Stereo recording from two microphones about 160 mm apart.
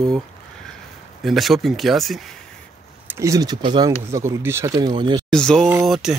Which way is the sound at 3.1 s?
20° right (ahead or behind).